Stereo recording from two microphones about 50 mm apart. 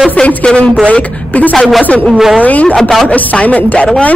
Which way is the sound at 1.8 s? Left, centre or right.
Left.